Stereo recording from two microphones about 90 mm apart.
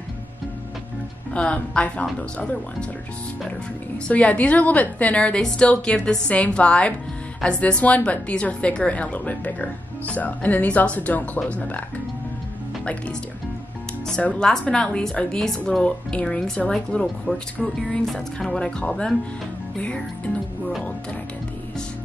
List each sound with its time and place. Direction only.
1.3 s a woman's voice: 10° left (ahead or behind)
4.1 s a woman's voice: 15° left (ahead or behind)
14.0 s a woman's voice: 5° left (ahead or behind)